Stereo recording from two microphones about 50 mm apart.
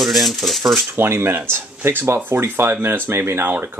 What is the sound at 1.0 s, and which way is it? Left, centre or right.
Speech, right.